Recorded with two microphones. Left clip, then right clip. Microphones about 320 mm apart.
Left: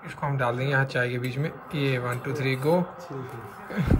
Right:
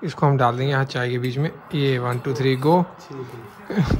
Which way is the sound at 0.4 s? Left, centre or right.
Centre.